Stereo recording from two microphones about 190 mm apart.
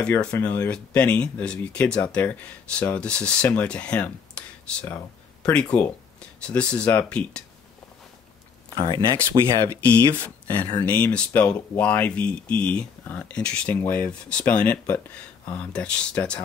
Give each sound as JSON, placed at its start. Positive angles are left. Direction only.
{"t": 0.0, "sound": "speech", "side_deg": 5}
{"t": 8.7, "sound": "speech", "side_deg": -25}
{"t": 10.8, "sound": "speech", "side_deg": 10}